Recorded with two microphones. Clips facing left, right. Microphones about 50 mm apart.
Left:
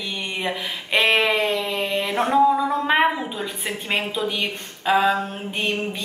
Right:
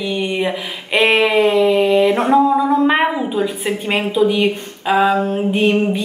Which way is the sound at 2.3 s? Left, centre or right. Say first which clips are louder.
Right 1 dB; centre.